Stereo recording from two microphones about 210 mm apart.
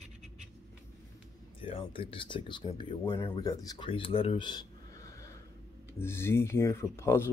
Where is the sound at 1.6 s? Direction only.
25° left (ahead or behind).